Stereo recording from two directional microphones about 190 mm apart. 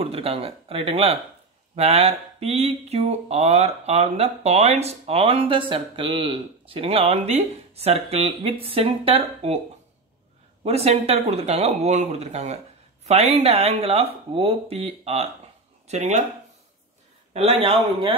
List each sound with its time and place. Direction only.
0.0 s speech: 30° right (ahead or behind)
10.6 s speech: 35° right (ahead or behind)
17.3 s speech: 35° right (ahead or behind)